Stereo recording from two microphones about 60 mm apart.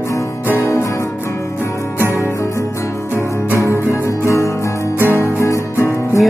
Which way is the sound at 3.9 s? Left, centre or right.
Left.